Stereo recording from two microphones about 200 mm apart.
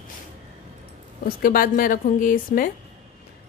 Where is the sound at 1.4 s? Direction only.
45° left (ahead or behind).